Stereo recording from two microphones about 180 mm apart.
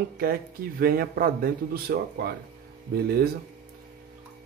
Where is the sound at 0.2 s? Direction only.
55° right (ahead or behind).